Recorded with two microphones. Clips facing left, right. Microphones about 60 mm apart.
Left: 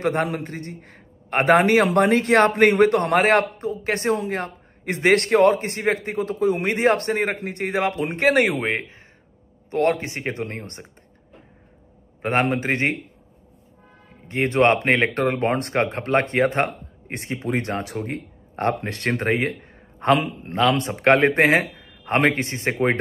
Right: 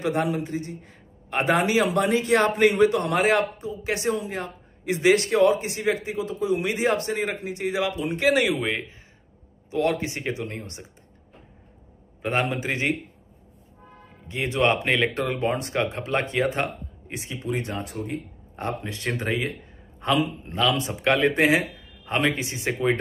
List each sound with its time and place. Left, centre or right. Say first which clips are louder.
0.0 s a man's voice: left 2 dB; left
10.3 s speech: left 2 dB; left
12.2 s speech: left 4 dB; left
14.2 s speech: left 5 dB; left